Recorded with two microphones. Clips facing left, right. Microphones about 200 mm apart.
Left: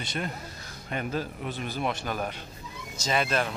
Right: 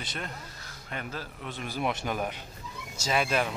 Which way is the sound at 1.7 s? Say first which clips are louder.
Right 2 dB; 10° right (ahead or behind).